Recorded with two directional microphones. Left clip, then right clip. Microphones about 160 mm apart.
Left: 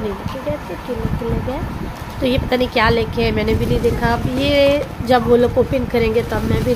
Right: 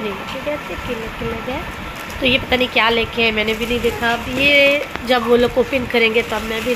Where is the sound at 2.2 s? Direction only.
25° left (ahead or behind).